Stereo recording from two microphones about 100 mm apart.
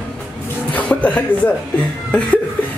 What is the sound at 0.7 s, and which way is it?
A man's voice, 15° left (ahead or behind).